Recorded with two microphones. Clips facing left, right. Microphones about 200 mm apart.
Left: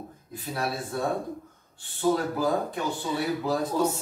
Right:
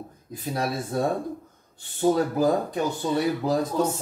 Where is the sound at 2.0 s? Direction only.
45° right (ahead or behind).